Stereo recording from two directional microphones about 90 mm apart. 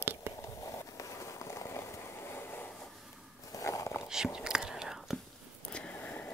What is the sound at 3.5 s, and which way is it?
Dog, 40° left (ahead or behind).